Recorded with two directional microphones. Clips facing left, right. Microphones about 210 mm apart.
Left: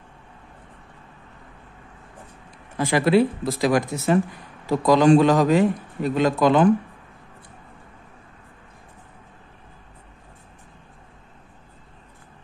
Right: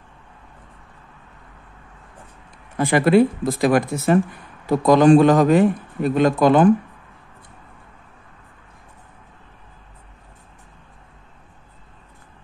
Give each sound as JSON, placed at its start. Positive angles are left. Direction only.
{"t": 2.8, "sound": "a man's voice", "side_deg": -55}